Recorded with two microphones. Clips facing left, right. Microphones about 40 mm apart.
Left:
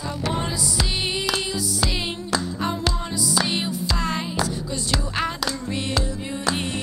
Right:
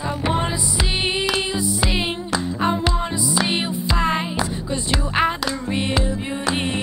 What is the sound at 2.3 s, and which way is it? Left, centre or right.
Music, right.